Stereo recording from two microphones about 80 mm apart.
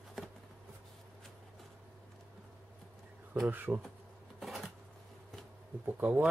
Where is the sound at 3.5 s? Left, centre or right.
Right.